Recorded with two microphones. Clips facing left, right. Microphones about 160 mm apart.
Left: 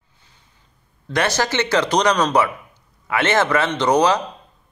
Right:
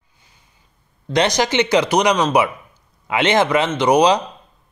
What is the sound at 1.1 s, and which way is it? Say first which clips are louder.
A man's voice: right 3 dB; 15° right (ahead or behind).